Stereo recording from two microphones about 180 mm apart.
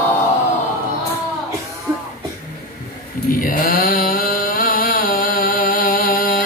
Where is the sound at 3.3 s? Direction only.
50° left (ahead or behind).